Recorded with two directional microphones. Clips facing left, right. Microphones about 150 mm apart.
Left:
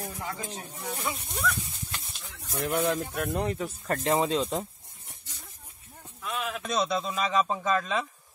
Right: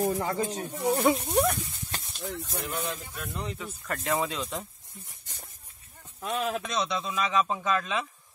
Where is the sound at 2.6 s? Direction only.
60° left (ahead or behind).